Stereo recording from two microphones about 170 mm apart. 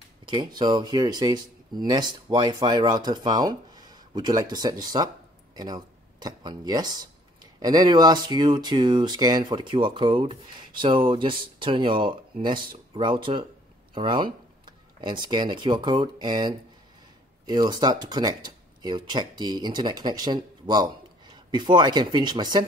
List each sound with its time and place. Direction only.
0.3 s speech: 25° right (ahead or behind)